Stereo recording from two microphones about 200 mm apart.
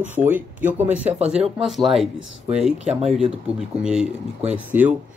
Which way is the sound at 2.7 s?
30° right (ahead or behind).